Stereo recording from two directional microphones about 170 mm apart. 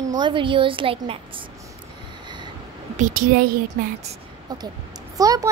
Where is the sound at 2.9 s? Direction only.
50° right (ahead or behind).